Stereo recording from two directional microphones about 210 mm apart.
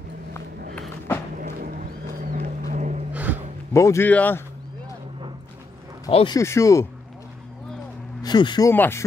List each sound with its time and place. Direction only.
0.7 s a sound: 10° left (ahead or behind)
1.4 s a sound: 40° right (ahead or behind)
2.3 s boat: 35° right (ahead or behind)
3.1 s music: 5° right (ahead or behind)
3.7 s speech: 15° left (ahead or behind)
6.0 s speech: 20° left (ahead or behind)
8.2 s speech: 20° left (ahead or behind)